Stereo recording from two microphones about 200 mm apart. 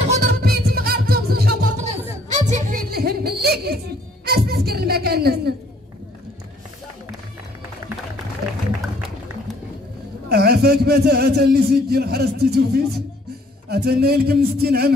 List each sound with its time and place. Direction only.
0.4 s music: 50° right (ahead or behind)
1.8 s music: 35° right (ahead or behind); by 5.5 s 50° right (ahead or behind)
8.4 s a sound: 50° right (ahead or behind)
10.3 s speech: 55° right (ahead or behind)